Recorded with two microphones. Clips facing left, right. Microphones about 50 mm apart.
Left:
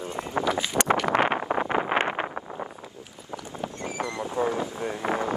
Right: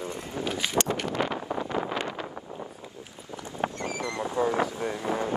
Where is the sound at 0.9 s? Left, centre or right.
Left.